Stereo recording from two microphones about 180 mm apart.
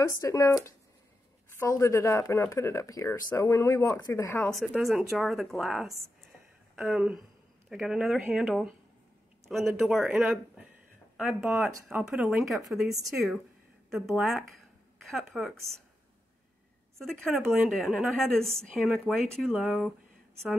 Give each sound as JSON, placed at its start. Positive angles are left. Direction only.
{"t": 0.0, "sound": "speech", "side_deg": 15}
{"t": 4.5, "sound": "a woman's voice", "side_deg": 0}
{"t": 17.0, "sound": "a woman's voice", "side_deg": 5}